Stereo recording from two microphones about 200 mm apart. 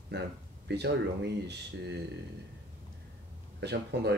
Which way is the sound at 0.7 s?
55° right (ahead or behind).